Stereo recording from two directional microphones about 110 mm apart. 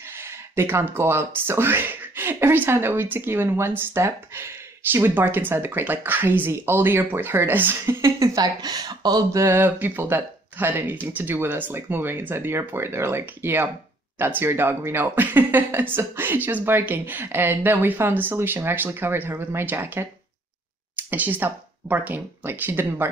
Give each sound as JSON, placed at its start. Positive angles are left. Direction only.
{"t": 0.2, "sound": "speech", "side_deg": -20}